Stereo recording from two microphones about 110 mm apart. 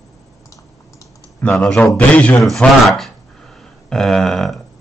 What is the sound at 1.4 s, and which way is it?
Speech, 5° left (ahead or behind).